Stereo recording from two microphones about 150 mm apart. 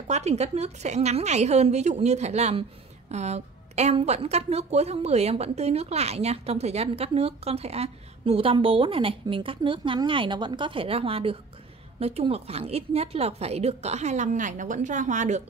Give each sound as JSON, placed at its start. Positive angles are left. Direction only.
{"t": 0.1, "sound": "a woman's voice", "side_deg": -45}